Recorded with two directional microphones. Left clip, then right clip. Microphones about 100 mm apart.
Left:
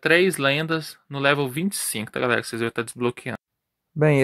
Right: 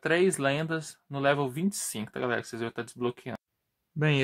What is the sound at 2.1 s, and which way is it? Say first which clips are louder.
Speech: left 8 dB; 45° left (ahead or behind).